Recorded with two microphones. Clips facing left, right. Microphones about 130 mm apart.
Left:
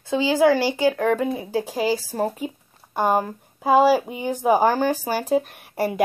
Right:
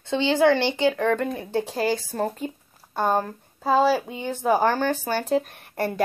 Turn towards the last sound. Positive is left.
turn(degrees=5)  # may be behind; listen again after turning